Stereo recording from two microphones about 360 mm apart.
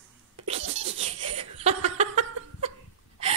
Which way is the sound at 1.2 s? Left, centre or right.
Centre.